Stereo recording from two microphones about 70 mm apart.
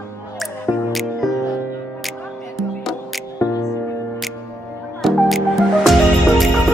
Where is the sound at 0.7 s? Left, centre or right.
Left.